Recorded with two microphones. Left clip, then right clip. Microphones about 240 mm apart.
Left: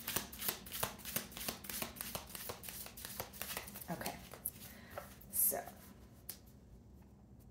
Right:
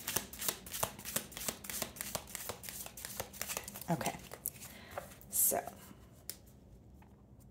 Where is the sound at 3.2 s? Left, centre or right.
Right.